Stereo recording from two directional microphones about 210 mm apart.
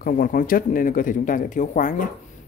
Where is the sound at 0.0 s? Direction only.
40° left (ahead or behind).